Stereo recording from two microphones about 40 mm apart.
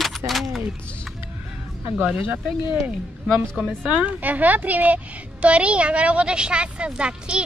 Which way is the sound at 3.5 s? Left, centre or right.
Right.